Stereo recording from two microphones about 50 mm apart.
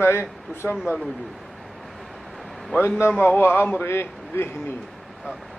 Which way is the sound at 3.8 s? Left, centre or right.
Left.